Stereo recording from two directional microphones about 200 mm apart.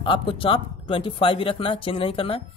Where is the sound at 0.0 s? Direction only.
25° left (ahead or behind).